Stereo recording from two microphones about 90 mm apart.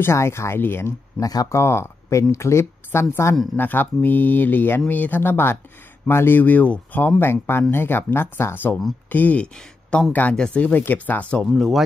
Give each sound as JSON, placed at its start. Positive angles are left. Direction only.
{"t": 0.0, "sound": "speech", "side_deg": 30}
{"t": 1.2, "sound": "a woman's voice", "side_deg": 40}
{"t": 1.6, "sound": "a woman's voice", "side_deg": 30}